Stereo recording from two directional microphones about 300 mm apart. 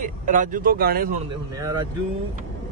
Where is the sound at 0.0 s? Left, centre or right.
Right.